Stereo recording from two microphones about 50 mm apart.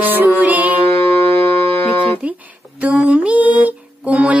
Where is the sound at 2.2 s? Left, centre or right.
Right.